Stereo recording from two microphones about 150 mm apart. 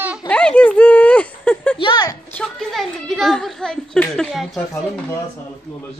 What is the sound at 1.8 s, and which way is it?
Speech, 30° left (ahead or behind).